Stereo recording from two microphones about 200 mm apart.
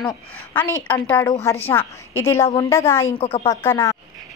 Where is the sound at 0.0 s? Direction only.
10° left (ahead or behind).